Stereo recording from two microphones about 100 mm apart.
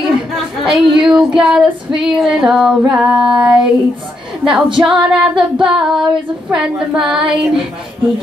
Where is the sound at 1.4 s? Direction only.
5° right (ahead or behind).